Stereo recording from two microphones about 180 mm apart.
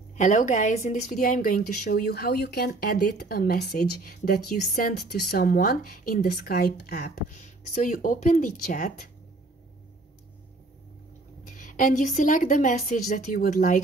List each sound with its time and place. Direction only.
0.1 s a woman's voice: 45° left (ahead or behind); by 7.3 s 60° left (ahead or behind)
7.3 s speech: 45° left (ahead or behind)
11.4 s speech: 45° left (ahead or behind)